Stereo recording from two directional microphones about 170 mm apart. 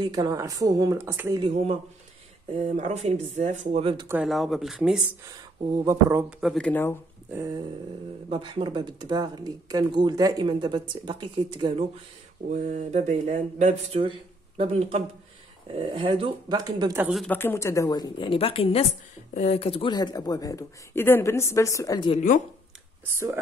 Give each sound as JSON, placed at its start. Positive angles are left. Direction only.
{"t": 0.0, "sound": "speech", "side_deg": -25}
{"t": 1.4, "sound": "speech", "side_deg": -40}
{"t": 4.1, "sound": "speech", "side_deg": -5}
{"t": 5.2, "sound": "speech", "side_deg": -20}
{"t": 6.4, "sound": "speech", "side_deg": 5}
{"t": 7.2, "sound": "speech", "side_deg": -15}
{"t": 8.3, "sound": "speech", "side_deg": -30}
{"t": 12.4, "sound": "speech", "side_deg": -45}
{"t": 17.0, "sound": "speech", "side_deg": 0}
{"t": 17.3, "sound": "speech", "side_deg": 15}
{"t": 22.1, "sound": "speech", "side_deg": 45}
{"t": 23.0, "sound": "speech", "side_deg": -15}